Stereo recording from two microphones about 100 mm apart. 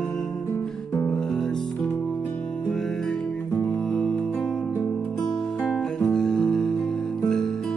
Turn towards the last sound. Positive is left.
turn(degrees=5)  # may be behind; listen again after turning